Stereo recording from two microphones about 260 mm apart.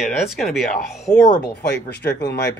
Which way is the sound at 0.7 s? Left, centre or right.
Left.